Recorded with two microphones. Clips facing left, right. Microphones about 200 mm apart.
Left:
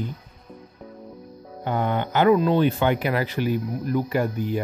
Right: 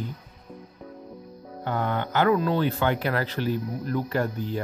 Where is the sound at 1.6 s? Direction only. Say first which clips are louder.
Left 3 dB; 15° left (ahead or behind).